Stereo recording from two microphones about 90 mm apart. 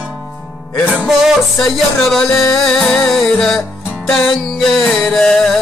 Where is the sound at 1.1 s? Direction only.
5° right (ahead or behind).